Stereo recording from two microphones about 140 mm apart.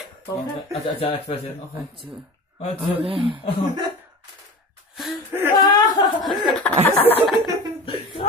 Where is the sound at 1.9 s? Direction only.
35° right (ahead or behind).